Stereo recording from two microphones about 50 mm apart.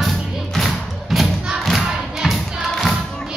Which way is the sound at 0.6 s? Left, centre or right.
Centre.